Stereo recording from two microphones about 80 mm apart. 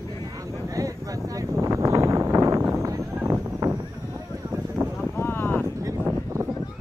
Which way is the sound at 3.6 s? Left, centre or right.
Right.